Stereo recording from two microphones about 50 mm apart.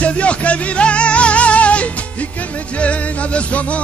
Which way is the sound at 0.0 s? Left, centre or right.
Left.